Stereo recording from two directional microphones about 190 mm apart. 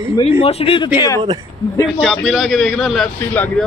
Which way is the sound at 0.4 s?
30° left (ahead or behind).